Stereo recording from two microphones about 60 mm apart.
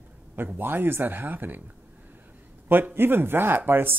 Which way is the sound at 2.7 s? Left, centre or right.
Right.